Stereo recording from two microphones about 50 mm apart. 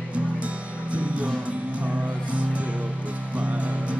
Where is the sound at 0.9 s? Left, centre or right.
Right.